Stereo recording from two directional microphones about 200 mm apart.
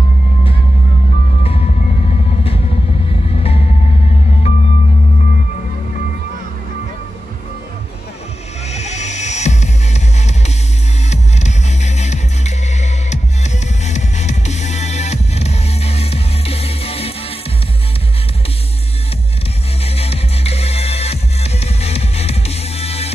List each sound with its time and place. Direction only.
1.4 s music: 30° left (ahead or behind)
8.7 s music: 35° left (ahead or behind)
19.8 s music: 30° left (ahead or behind)